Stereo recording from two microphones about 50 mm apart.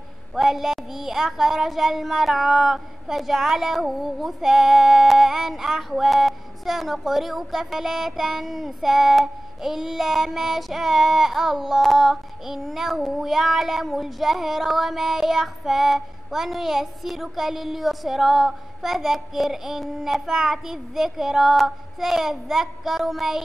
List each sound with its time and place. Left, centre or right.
0.3 s a child's voice: centre